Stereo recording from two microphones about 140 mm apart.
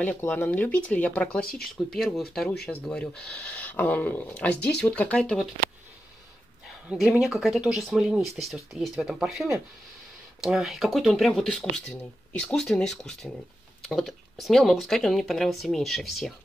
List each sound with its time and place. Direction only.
0.0 s speech: 15° left (ahead or behind)
1.5 s speech: 90° left
2.0 s speech: 5° left (ahead or behind)
6.9 s speech: centre (ahead or behind)